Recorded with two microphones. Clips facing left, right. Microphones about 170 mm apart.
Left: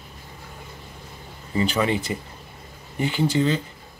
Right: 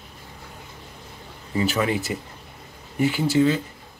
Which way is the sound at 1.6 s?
5° right (ahead or behind).